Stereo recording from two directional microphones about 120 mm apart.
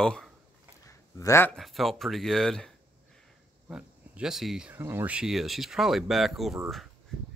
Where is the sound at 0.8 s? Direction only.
25° left (ahead or behind).